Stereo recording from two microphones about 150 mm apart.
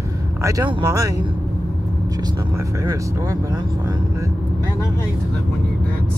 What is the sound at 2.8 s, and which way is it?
Speech, 20° right (ahead or behind).